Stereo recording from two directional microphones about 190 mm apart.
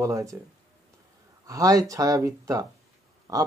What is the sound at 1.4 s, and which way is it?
Speech, 20° right (ahead or behind).